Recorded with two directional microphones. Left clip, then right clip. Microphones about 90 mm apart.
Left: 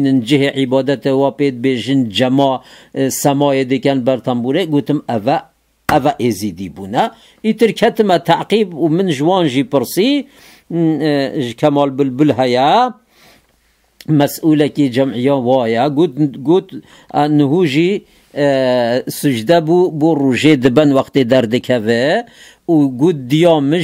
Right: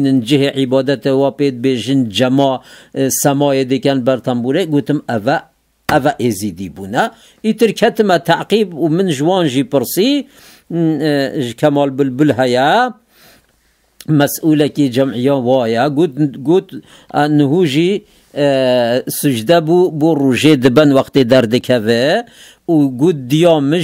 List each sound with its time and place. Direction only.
0.0 s speech: 25° right (ahead or behind)
14.0 s speech: 25° right (ahead or behind)